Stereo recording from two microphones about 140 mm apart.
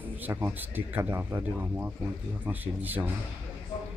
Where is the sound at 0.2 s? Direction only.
15° right (ahead or behind).